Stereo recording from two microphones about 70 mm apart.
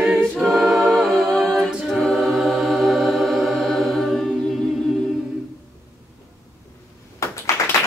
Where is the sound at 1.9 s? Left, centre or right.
Centre.